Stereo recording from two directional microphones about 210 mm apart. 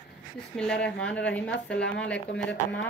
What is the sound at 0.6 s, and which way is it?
A woman's voice, 5° left (ahead or behind).